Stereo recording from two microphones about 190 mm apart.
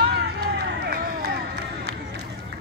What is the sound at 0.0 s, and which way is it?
Run, 55° right (ahead or behind).